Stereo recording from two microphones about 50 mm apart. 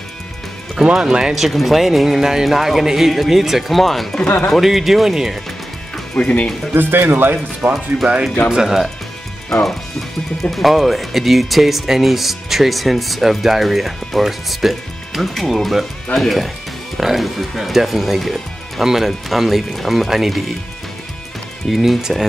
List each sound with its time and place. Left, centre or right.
0.8 s speech: centre
6.1 s speech: left
6.7 s speech: right
8.5 s speech: centre
9.5 s speech: centre
21.6 s speech: centre